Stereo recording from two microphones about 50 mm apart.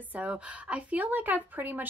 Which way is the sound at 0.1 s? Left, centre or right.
Right.